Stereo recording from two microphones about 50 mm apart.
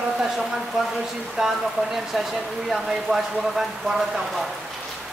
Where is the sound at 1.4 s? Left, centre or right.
Centre.